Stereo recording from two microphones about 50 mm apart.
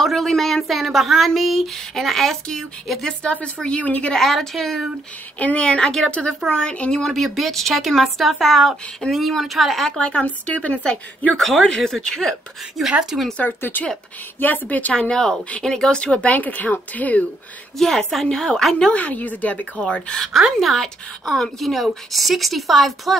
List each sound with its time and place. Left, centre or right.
0.0 s a woman's voice: centre
3.3 s speech: left
4.1 s a woman's voice: centre
5.4 s a woman's voice: left; by 9.8 s centre
9.8 s a woman's voice: centre
10.2 s speech: left
11.3 s a woman's voice: centre
13.1 s speech: centre
13.6 s speech: left
15.0 s a woman's voice: centre; by 17.2 s left
17.7 s a woman's voice: centre
18.9 s speech: left
19.8 s speech: centre
20.3 s a woman's voice: centre